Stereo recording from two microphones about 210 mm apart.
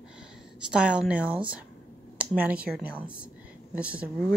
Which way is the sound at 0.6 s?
5° right (ahead or behind).